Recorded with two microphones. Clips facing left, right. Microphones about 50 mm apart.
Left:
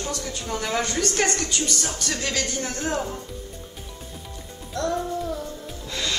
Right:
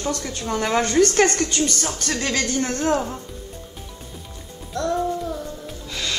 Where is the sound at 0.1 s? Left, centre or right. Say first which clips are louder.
Right 4 dB; right.